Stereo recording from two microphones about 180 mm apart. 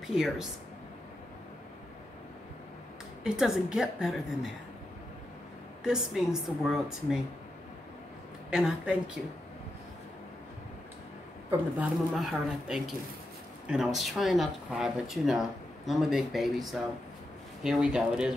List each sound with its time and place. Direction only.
0.0 s speech: centre (ahead or behind)
3.3 s speech: 5° right (ahead or behind)
5.9 s speech: 5° right (ahead or behind)
8.5 s speech: 5° right (ahead or behind)
11.8 s speech: centre (ahead or behind)